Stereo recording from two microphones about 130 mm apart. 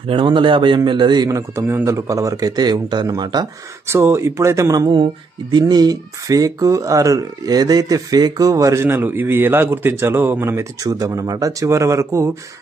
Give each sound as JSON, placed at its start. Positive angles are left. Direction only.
{"t": 0.0, "sound": "a man's voice", "side_deg": -40}
{"t": 3.8, "sound": "speech", "side_deg": -20}